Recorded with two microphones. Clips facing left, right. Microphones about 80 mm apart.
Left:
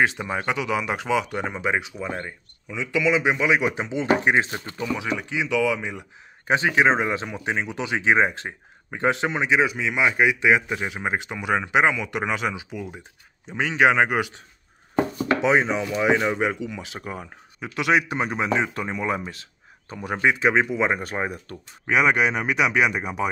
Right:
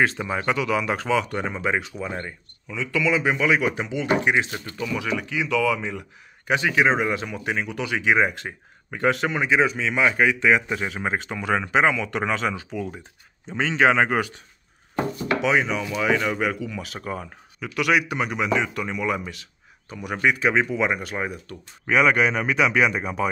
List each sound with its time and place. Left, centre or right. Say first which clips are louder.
0.0 s speech: even; centre; by 4.5 s left
4.5 s speech: left 1 dB; left
6.4 s speech: left 1 dB; left
15.4 s speech: left 1 dB; left
21.8 s speech: right 1 dB; centre